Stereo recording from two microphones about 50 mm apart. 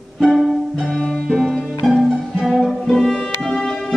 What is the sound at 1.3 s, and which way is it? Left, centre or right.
Music, centre.